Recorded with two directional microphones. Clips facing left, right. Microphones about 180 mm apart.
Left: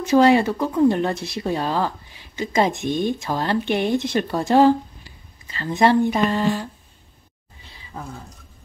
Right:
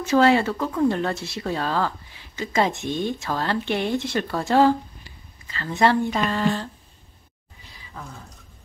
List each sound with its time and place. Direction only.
0.0 s speech: 15° left (ahead or behind)